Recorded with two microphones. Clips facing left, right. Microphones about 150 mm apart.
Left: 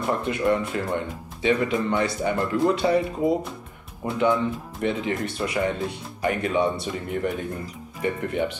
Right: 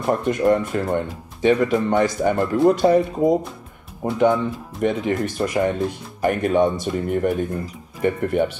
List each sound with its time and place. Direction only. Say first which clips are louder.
0.0 s speech: right 5 dB; 45° right (ahead or behind)